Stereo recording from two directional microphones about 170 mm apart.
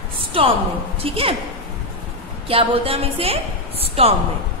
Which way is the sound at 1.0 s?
35° right (ahead or behind).